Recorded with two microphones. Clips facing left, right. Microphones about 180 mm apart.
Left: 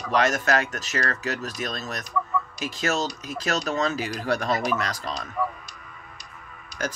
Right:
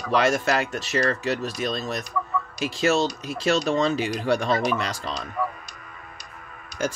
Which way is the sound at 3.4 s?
30° right (ahead or behind).